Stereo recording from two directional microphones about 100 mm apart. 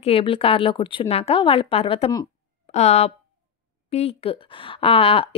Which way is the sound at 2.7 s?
90° left.